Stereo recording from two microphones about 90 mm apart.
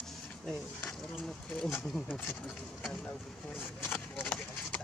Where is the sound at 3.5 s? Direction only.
25° left (ahead or behind).